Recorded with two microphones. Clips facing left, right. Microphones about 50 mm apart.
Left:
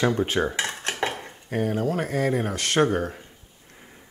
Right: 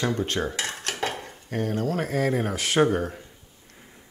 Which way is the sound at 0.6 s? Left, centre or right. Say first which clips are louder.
Left 2 dB; left.